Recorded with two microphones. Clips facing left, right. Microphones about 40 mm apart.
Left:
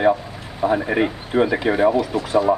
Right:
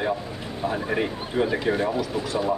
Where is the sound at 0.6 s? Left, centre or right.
Left.